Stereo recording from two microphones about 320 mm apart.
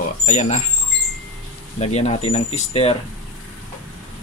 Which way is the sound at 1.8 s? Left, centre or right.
Left.